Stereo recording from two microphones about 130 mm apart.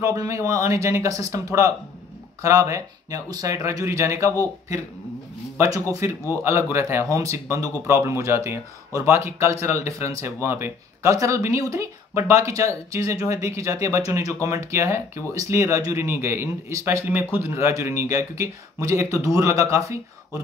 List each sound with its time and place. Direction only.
0.0 s speech: 25° right (ahead or behind)